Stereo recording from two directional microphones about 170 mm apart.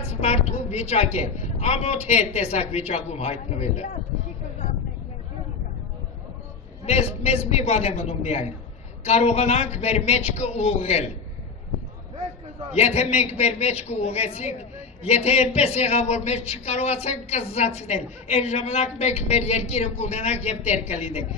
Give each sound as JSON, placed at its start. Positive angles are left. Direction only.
{"t": 0.0, "sound": "a man's voice", "side_deg": 40}
{"t": 6.9, "sound": "a man's voice", "side_deg": 35}
{"t": 12.7, "sound": "a man's voice", "side_deg": 40}